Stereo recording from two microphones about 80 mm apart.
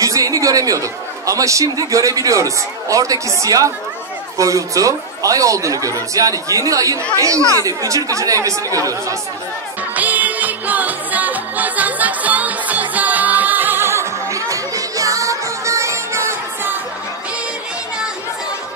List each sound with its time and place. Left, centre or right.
0.0 s speech: right
9.9 s music: centre